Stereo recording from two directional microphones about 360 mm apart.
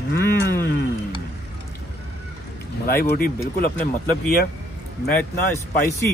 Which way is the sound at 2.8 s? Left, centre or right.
Left.